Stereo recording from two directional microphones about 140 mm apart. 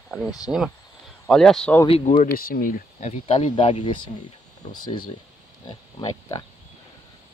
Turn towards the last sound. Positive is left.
turn(degrees=30)  # may be behind; listen again after turning